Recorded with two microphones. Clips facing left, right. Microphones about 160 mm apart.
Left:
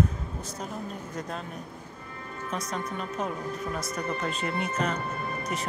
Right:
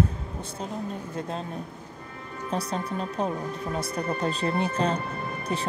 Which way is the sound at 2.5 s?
35° right (ahead or behind).